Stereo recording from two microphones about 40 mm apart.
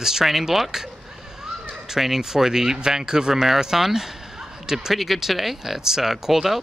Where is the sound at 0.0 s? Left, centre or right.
Centre.